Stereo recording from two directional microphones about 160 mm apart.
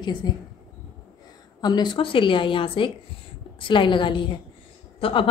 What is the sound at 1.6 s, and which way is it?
A woman's voice, 25° left (ahead or behind).